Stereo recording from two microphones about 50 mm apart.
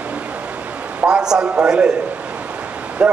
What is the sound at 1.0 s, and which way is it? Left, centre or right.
Speech, centre.